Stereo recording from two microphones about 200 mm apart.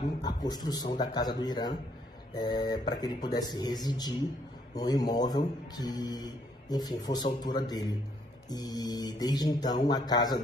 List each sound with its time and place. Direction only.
0.2 s speech: 20° left (ahead or behind)